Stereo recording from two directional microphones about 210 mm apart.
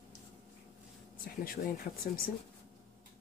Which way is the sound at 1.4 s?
45° left (ahead or behind).